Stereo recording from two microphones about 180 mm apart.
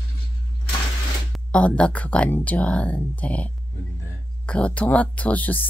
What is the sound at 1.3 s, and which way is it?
Speech, 5° left (ahead or behind).